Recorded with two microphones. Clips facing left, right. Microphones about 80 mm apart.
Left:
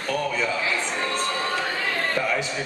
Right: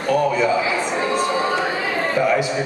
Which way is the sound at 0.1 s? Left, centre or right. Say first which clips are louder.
Right 8 dB; centre.